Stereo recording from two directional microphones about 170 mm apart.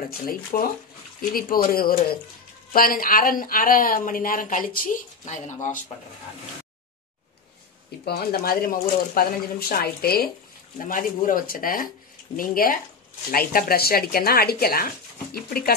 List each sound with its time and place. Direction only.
0.3 s speech: 55° left (ahead or behind)
8.0 s speech: 70° left (ahead or behind)
10.9 s speech: 55° left (ahead or behind)